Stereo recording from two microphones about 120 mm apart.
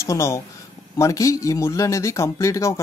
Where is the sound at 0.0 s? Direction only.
25° left (ahead or behind).